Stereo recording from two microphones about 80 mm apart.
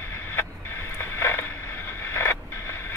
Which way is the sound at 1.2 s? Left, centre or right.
Left.